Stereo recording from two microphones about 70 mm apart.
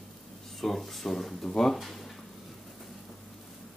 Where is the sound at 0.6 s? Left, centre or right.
Centre.